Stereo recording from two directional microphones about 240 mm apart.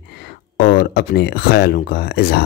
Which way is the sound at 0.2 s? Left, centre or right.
Left.